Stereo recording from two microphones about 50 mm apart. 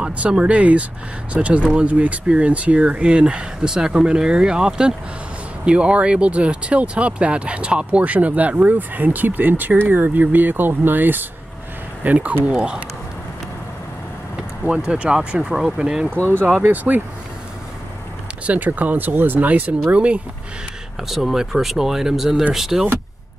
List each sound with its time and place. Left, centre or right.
0.0 s speech: right
12.0 s speech: right
14.9 s speech: right
16.6 s speech: right
18.5 s speech: right
21.1 s speech: centre